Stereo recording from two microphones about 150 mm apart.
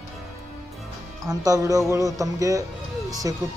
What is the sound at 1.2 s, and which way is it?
Music, 25° right (ahead or behind).